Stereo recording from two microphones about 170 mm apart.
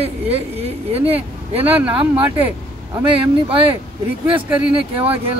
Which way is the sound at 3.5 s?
35° right (ahead or behind).